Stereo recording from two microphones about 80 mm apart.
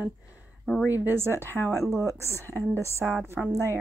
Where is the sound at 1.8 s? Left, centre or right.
Right.